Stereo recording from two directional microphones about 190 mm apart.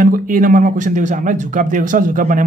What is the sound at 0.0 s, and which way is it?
Speech, 45° right (ahead or behind).